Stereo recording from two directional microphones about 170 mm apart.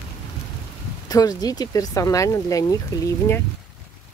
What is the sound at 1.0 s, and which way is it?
Speech, 20° left (ahead or behind).